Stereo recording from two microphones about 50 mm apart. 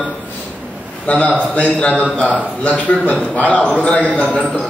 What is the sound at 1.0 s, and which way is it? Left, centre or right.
A man's voice, left.